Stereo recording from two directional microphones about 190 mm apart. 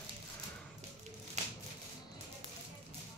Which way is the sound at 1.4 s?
35° right (ahead or behind).